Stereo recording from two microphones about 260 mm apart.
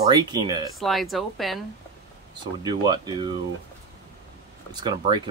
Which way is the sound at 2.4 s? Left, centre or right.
Centre.